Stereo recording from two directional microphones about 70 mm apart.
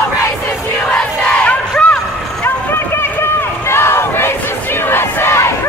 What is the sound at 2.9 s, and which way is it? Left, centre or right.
Run, left.